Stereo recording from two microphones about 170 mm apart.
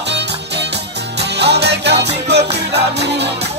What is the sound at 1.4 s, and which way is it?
Music, 80° right.